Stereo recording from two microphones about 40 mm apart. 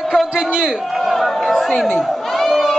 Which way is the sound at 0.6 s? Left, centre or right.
Centre.